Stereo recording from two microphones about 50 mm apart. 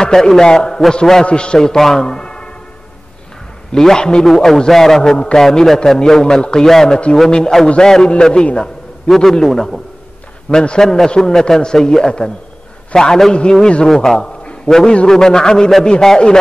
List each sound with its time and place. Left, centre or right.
0.0 s a man's voice: centre
3.7 s a man's voice: centre
10.5 s a man's voice: centre
10.8 s a man's voice: centre
13.8 s a man's voice: centre